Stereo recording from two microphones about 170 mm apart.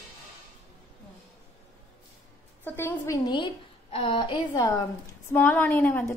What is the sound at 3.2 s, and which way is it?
A woman's voice, 25° left (ahead or behind).